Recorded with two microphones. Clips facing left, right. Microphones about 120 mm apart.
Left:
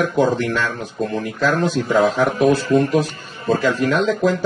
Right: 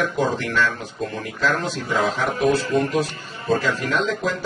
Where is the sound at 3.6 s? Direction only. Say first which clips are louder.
Left 5 dB; 45° left (ahead or behind).